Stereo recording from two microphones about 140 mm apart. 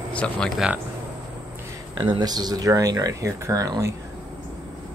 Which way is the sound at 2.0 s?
30° right (ahead or behind).